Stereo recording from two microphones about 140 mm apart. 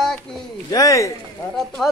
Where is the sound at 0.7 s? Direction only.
25° left (ahead or behind).